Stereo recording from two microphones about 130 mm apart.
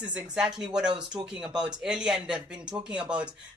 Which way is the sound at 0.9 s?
35° right (ahead or behind).